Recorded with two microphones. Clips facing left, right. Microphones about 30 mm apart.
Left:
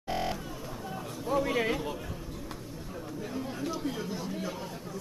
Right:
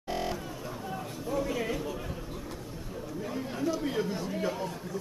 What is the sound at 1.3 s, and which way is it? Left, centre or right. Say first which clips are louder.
Speech: left 3 dB; left.